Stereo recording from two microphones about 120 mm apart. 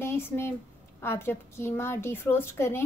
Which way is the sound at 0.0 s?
20° left (ahead or behind).